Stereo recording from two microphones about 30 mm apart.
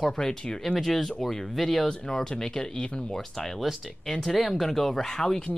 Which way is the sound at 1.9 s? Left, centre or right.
Left.